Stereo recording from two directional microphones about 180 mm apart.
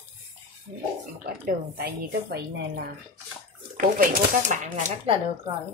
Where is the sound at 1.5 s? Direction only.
60° right (ahead or behind).